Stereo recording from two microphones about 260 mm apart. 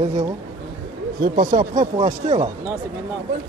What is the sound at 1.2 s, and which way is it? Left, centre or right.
Speech, right.